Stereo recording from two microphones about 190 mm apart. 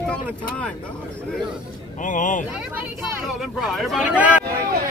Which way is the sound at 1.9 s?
40° left (ahead or behind).